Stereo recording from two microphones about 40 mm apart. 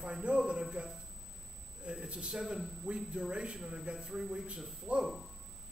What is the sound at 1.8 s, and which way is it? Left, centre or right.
A man's voice, right.